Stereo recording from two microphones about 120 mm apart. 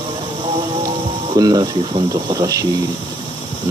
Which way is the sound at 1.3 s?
35° right (ahead or behind).